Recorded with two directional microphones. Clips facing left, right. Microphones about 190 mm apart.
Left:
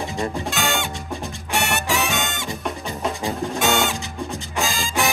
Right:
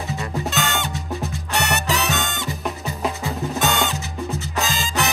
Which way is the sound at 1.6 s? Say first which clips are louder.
Even; 10° left (ahead or behind).